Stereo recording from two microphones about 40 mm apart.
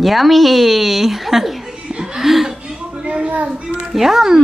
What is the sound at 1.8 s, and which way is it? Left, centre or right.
Chuckle, right.